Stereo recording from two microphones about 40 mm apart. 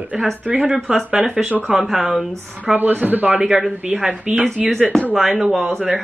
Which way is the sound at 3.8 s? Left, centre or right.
Right.